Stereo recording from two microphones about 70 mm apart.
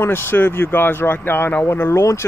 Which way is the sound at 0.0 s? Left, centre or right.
Left.